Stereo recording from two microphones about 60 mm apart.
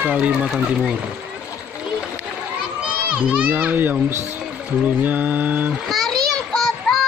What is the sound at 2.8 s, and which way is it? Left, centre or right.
A child's voice, right.